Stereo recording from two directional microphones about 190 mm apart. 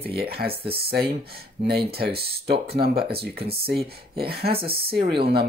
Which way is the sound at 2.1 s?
30° right (ahead or behind).